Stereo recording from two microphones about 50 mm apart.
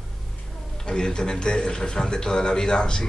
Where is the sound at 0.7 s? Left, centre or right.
Centre.